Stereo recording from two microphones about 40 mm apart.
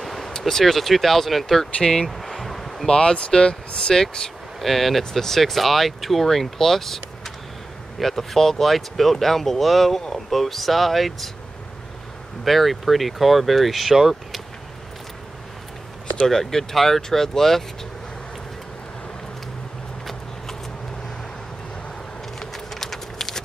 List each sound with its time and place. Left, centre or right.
0.0 s vehicle: centre
0.3 s speech: centre
1.8 s speech: centre
2.0 s a sound: centre
2.9 s speech: left
4.6 s speech: centre
12.4 s speech: centre
16.3 s speech: centre
22.4 s a sound: centre